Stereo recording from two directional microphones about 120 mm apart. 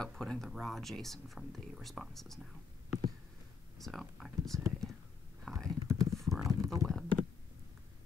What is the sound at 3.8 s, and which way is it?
Speech, centre (ahead or behind).